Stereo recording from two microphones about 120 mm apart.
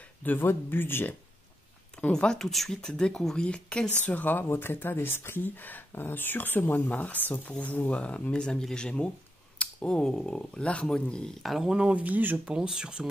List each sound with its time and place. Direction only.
0.2 s speech: 15° left (ahead or behind); by 13.0 s 5° right (ahead or behind)